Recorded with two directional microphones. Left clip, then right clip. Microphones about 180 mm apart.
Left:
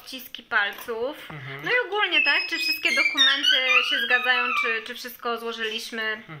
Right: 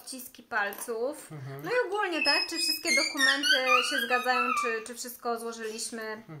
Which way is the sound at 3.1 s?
20° left (ahead or behind).